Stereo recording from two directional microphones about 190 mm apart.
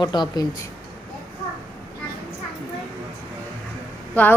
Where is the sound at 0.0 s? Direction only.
25° left (ahead or behind).